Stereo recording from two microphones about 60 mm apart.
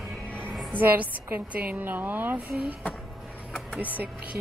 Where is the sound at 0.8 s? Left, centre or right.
Right.